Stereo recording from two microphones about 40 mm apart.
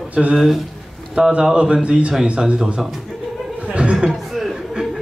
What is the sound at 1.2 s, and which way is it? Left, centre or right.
Speech, right.